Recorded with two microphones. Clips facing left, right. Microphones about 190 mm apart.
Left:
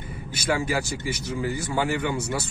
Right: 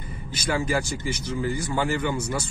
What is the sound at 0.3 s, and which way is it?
Speech, 10° left (ahead or behind).